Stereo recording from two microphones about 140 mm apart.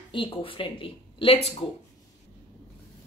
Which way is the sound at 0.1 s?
40° left (ahead or behind).